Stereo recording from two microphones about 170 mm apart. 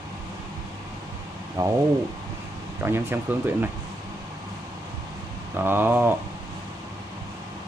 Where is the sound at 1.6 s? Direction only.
20° right (ahead or behind).